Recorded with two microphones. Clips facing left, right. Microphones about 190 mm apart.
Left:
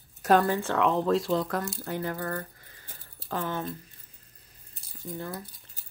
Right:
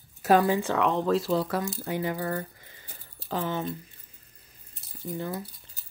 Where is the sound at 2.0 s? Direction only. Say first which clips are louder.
Right 3 dB; 15° right (ahead or behind).